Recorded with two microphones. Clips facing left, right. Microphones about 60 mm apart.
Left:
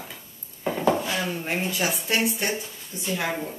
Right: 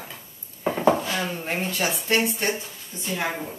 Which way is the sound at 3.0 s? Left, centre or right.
Centre.